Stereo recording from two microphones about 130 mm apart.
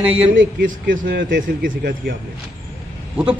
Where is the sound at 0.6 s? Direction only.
90° right.